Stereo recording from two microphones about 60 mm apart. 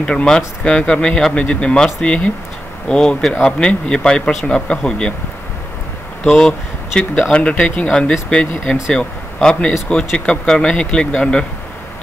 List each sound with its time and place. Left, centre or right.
0.0 s speech: centre
6.2 s speech: centre